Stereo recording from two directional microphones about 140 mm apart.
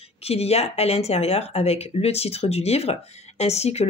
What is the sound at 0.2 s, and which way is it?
Speech, 45° left (ahead or behind).